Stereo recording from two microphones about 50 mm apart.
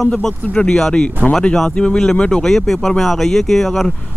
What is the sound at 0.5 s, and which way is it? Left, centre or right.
Speech, left.